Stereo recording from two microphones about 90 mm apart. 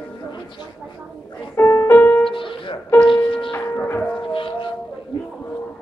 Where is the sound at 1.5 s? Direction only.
30° left (ahead or behind).